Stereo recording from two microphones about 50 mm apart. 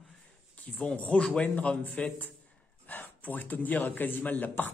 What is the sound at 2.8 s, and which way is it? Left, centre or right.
A man's voice, left.